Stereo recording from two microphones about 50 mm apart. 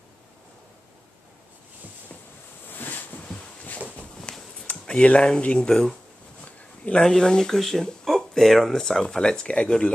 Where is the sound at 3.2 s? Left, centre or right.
Centre.